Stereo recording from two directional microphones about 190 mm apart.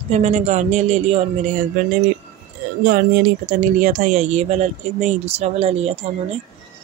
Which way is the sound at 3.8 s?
40° right (ahead or behind).